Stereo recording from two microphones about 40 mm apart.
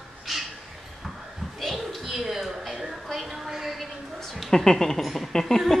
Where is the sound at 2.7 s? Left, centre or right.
Centre.